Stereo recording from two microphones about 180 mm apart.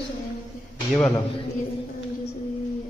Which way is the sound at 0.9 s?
15° left (ahead or behind).